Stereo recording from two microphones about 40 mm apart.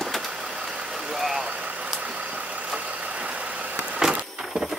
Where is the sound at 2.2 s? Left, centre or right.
Right.